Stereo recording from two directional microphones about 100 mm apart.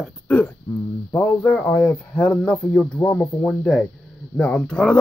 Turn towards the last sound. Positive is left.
turn(degrees=10)  # may be behind; listen again after turning